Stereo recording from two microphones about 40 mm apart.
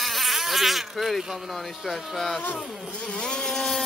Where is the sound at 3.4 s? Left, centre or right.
Centre.